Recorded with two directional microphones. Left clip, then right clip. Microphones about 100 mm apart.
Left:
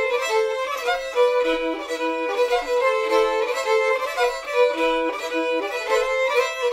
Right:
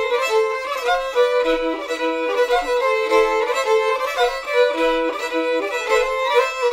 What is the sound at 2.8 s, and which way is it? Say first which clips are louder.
Violin: right 1 dB; 50° left (ahead or behind).